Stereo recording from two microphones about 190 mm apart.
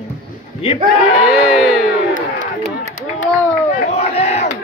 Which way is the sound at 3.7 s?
35° left (ahead or behind).